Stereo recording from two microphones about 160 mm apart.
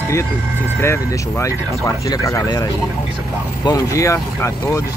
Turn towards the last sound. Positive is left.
turn(degrees=15)  # may be behind; listen again after turning